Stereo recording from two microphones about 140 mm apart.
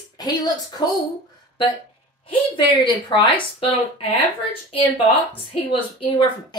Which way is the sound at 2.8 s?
35° left (ahead or behind).